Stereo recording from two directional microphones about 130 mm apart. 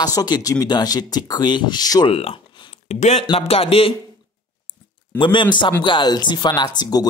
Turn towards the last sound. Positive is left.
turn(degrees=30)  # may be behind; listen again after turning